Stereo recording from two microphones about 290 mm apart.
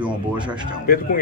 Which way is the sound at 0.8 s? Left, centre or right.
Left.